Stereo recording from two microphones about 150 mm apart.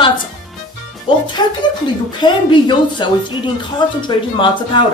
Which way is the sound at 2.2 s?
30° left (ahead or behind).